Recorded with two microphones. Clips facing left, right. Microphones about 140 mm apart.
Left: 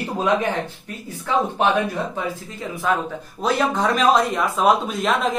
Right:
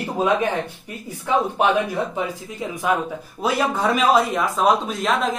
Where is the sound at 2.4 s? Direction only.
15° right (ahead or behind).